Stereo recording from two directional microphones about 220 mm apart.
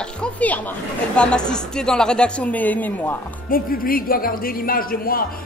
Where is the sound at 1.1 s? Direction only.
5° left (ahead or behind).